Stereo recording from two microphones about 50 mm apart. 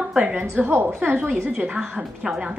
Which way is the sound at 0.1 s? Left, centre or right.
Right.